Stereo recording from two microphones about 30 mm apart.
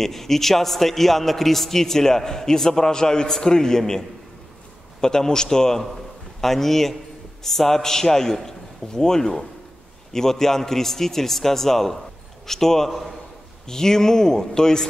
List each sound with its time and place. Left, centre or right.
0.0 s a man's voice: centre
5.0 s speech: left
6.4 s a man's voice: centre